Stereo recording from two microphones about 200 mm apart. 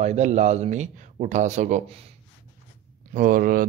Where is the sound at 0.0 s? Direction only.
35° right (ahead or behind).